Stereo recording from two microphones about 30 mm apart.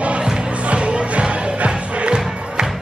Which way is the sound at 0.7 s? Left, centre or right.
Right.